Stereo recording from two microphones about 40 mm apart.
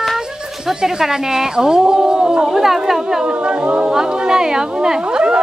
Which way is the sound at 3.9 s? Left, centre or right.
Centre.